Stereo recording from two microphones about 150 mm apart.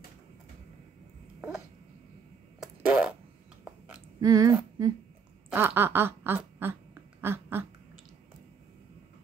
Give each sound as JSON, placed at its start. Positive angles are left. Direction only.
{"t": 2.6, "sound": "fart", "side_deg": -5}
{"t": 4.2, "sound": "speech", "side_deg": -25}
{"t": 5.5, "sound": "quack", "side_deg": -15}